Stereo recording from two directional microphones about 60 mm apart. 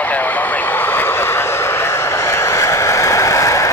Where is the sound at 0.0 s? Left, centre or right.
Left.